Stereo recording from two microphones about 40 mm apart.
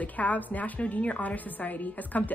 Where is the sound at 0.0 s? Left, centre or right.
Left.